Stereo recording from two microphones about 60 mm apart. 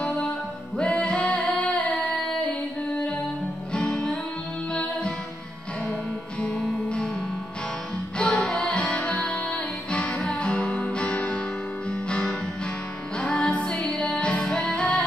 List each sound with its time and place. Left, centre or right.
0.7 s music: centre
3.7 s music: centre
6.4 s music: left
8.2 s music: centre
13.2 s music: centre